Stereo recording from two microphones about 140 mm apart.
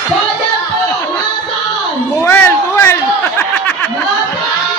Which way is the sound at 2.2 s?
15° left (ahead or behind).